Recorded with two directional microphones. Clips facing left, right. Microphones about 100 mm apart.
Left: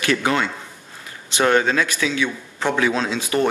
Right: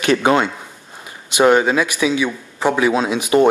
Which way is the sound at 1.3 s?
15° right (ahead or behind).